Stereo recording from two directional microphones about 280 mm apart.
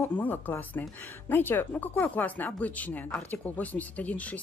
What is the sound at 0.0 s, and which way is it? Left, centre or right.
Speech, centre.